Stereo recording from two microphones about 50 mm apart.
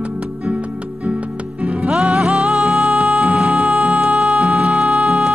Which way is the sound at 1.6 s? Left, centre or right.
Centre.